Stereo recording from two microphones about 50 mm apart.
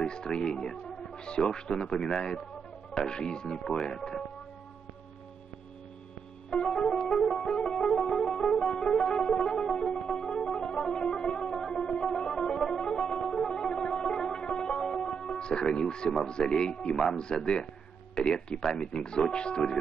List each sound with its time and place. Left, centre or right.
0.0 s speech: centre
2.0 s a man's voice: centre
6.5 s music: centre
16.3 s speech: centre
16.9 s a man's voice: centre
17.2 s speech: centre